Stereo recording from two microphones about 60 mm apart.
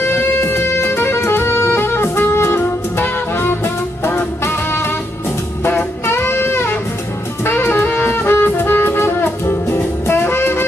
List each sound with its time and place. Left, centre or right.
0.0 s music: left
7.4 s saxophone: left
7.9 s music: left